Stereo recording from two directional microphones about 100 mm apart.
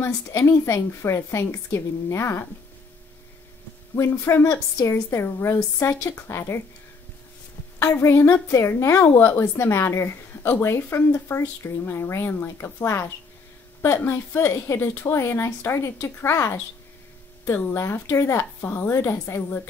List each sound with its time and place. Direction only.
0.0 s a woman's voice: 30° left (ahead or behind)
3.9 s a woman's voice: 25° left (ahead or behind)
7.8 s a woman's voice: 25° left (ahead or behind)
17.6 s a woman's voice: 25° left (ahead or behind)